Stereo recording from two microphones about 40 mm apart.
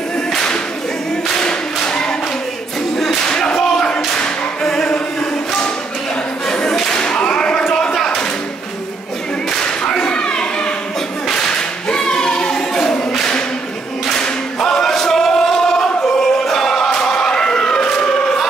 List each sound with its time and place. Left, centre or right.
1.8 s clapping: left
3.2 s a sound: left
4.7 s music: centre
6.5 s whip: centre
7.9 s a sound: centre
9.5 s whip: centre
11.2 s whip: centre
11.5 s clapping: left
14.1 s singing: centre
16.2 s choir: centre
17.0 s a sound: centre